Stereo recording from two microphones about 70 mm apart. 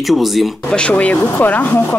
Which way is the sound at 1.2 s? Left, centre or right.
Left.